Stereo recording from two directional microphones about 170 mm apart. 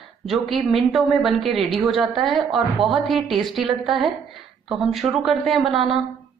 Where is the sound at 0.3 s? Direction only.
Centre (ahead or behind).